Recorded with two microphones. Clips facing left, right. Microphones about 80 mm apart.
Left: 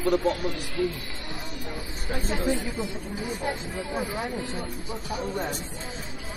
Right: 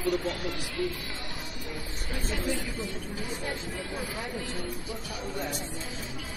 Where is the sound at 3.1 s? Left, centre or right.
Centre.